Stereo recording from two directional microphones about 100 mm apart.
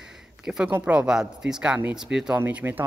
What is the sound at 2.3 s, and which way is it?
Speech, 20° right (ahead or behind).